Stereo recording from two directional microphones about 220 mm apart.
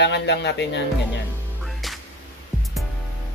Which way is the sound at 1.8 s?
Centre (ahead or behind).